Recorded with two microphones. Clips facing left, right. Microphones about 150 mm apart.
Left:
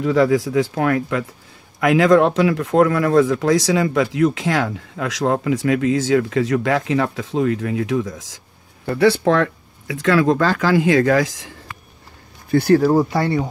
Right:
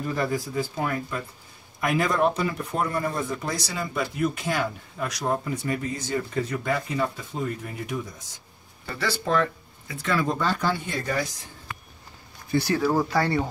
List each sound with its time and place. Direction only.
0.0 s speech: 90° left
8.8 s speech: 60° left (ahead or behind); by 11.5 s 90° left
12.4 s speech: 55° left (ahead or behind)
12.9 s speech: 20° left (ahead or behind)